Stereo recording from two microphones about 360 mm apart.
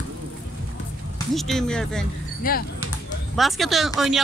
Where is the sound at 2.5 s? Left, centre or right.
Left.